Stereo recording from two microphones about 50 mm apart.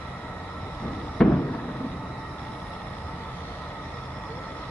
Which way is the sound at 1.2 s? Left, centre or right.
Centre.